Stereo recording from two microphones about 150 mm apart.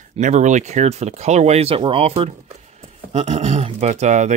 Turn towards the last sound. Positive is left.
turn(degrees=-50)  # may be behind; listen again after turning